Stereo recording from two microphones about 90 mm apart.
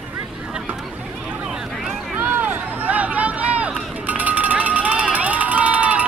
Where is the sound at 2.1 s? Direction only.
15° right (ahead or behind).